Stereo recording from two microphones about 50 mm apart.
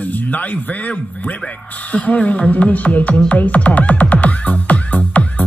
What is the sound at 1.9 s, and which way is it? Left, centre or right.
Speech, left.